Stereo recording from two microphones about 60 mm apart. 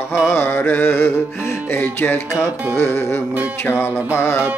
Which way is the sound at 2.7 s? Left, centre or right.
Left.